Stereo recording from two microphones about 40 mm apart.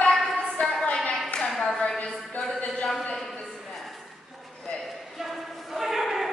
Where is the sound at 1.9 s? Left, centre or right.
Left.